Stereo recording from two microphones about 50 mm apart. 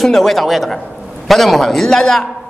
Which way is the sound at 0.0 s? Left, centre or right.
Centre.